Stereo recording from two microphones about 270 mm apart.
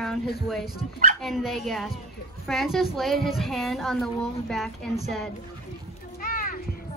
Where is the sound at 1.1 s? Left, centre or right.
Centre.